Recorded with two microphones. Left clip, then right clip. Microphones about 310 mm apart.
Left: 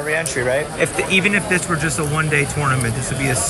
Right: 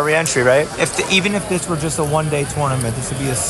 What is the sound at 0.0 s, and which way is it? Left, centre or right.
Speech, right.